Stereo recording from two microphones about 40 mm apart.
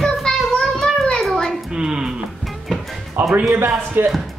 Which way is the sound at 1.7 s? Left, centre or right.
Centre.